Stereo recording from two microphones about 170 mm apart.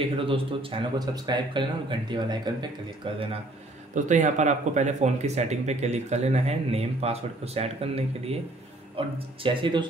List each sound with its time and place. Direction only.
0.2 s speech: 30° right (ahead or behind)
3.9 s speech: 45° right (ahead or behind); by 9.8 s 30° right (ahead or behind)